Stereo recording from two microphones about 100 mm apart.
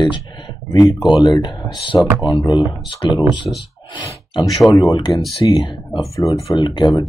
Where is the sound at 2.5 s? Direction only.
55° left (ahead or behind).